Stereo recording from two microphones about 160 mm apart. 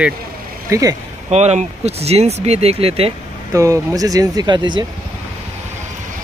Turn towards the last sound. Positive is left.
turn(degrees=-30)  # may be behind; listen again after turning